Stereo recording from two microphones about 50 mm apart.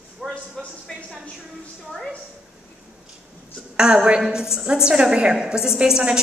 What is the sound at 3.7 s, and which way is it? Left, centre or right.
A woman's voice, centre.